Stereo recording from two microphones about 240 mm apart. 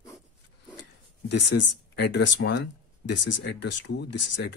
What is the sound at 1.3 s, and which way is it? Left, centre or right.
Speech, left.